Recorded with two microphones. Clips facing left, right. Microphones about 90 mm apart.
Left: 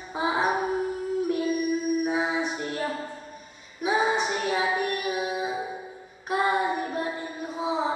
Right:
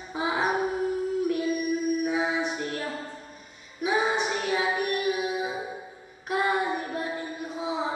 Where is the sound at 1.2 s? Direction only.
25° left (ahead or behind).